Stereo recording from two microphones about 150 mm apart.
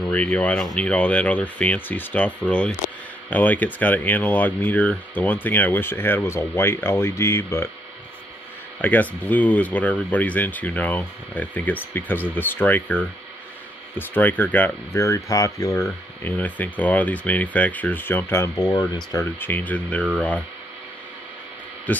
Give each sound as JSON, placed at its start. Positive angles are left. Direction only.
{"t": 0.0, "sound": "speech", "side_deg": 10}
{"t": 8.8, "sound": "speech", "side_deg": 10}